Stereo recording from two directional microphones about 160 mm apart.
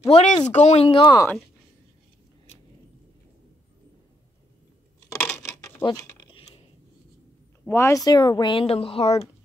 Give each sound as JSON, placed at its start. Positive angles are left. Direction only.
{"t": 0.1, "sound": "speech", "side_deg": 45}
{"t": 0.8, "sound": "speech", "side_deg": 30}
{"t": 5.1, "sound": "a sound", "side_deg": 15}
{"t": 5.8, "sound": "speech", "side_deg": 25}
{"t": 6.3, "sound": "mechanisms", "side_deg": 35}
{"t": 7.6, "sound": "speech", "side_deg": 15}